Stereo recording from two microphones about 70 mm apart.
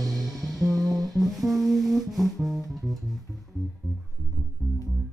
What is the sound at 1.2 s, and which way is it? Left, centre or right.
Music, centre.